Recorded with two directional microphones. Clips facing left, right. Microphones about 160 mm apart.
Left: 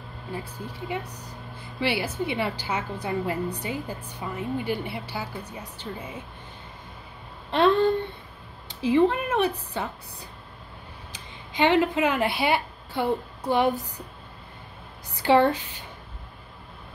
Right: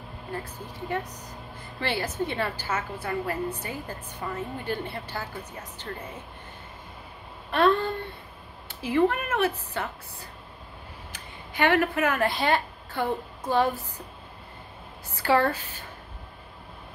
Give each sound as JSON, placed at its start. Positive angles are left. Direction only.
{"t": 0.3, "sound": "a woman's voice", "side_deg": 10}
{"t": 8.6, "sound": "a woman's voice", "side_deg": 20}
{"t": 11.1, "sound": "a woman's voice", "side_deg": 15}
{"t": 15.1, "sound": "speech", "side_deg": 20}